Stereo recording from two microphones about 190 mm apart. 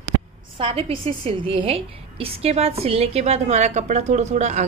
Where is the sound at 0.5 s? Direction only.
30° right (ahead or behind).